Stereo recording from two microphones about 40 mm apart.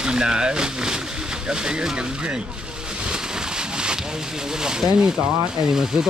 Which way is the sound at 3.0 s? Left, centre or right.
Centre.